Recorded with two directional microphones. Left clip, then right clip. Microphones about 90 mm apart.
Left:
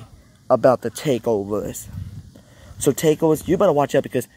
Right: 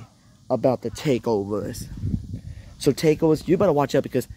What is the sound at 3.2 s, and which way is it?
Speech, 15° right (ahead or behind).